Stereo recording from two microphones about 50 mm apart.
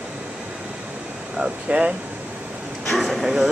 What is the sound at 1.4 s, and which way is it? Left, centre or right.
Speech, right.